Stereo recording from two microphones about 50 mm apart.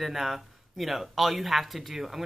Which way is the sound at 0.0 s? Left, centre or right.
Centre.